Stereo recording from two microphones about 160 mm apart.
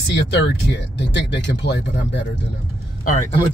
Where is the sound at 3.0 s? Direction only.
50° left (ahead or behind).